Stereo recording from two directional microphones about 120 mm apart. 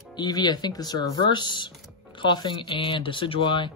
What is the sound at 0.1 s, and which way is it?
Speech, 40° left (ahead or behind).